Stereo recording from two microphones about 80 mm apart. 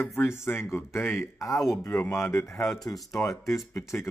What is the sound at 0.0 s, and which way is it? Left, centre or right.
Speech, left.